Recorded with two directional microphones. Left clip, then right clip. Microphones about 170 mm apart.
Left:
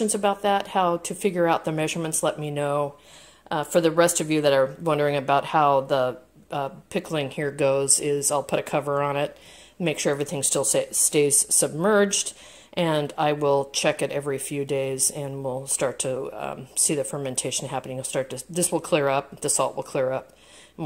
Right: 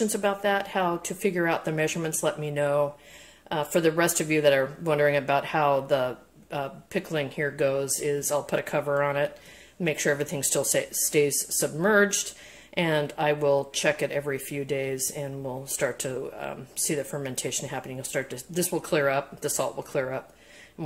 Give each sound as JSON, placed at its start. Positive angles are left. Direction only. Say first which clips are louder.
{"t": 0.0, "sound": "speech", "louder": "left 3 dB", "side_deg": 35}